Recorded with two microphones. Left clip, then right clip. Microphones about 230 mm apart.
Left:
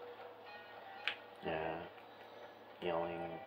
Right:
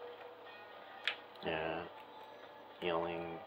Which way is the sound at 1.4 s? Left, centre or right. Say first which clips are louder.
Right 2 dB; centre.